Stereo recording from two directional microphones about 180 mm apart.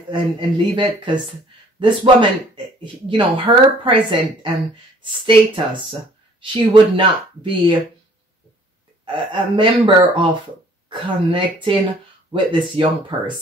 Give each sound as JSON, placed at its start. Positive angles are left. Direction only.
{"t": 0.1, "sound": "speech", "side_deg": -25}
{"t": 9.0, "sound": "speech", "side_deg": -25}